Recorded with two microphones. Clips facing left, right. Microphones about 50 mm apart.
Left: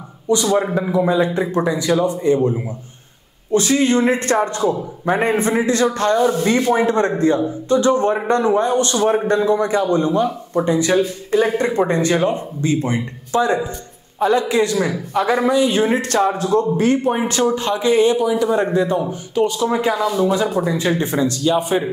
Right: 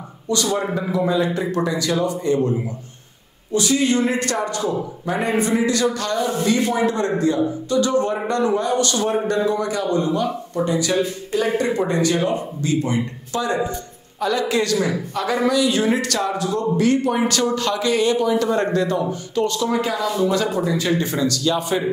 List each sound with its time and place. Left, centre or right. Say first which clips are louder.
0.3 s a man's voice: left 5 dB; left
3.5 s a man's voice: left 3 dB; left
18.1 s speech: left 2 dB; centre
20.1 s speech: even; centre
20.5 s a man's voice: left 2 dB; left